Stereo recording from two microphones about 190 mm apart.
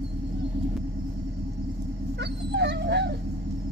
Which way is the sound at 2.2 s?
60° right (ahead or behind).